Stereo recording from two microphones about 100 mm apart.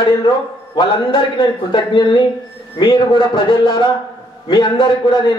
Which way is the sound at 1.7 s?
55° left (ahead or behind).